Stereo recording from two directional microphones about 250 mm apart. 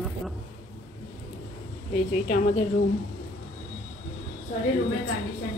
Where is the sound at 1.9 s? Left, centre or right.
Left.